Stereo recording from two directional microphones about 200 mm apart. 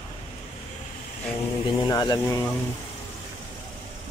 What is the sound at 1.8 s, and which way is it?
Speech, 20° left (ahead or behind).